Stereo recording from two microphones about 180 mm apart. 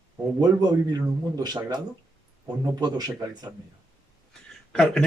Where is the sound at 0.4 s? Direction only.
20° right (ahead or behind).